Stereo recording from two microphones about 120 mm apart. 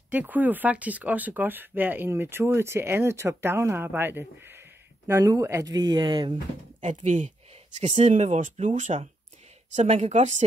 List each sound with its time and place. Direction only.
0.1 s speech: 15° right (ahead or behind); by 6.3 s 40° right (ahead or behind)
6.8 s speech: 85° right
9.8 s a woman's voice: 60° right (ahead or behind)